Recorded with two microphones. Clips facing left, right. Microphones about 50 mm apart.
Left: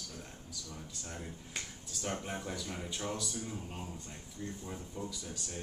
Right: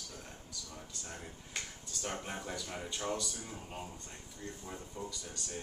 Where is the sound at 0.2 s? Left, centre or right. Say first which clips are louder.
Left 1 dB; centre.